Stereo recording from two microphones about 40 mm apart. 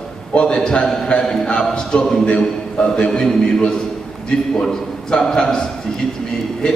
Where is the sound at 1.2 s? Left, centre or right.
Centre.